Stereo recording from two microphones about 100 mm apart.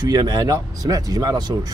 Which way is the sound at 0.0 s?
45° right (ahead or behind).